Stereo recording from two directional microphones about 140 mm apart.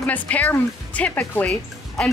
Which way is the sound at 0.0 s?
10° left (ahead or behind).